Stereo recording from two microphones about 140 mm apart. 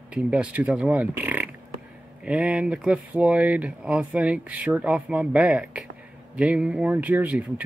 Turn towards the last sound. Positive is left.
turn(degrees=-10)  # may be behind; listen again after turning